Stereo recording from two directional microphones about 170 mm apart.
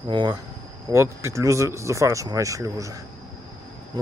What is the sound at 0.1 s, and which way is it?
Speech, 30° right (ahead or behind).